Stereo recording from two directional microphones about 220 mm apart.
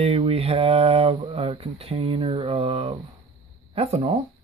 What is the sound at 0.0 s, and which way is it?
Speech, 25° right (ahead or behind).